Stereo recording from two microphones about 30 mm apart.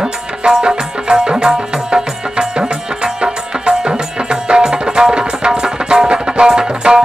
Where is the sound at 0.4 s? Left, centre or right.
Right.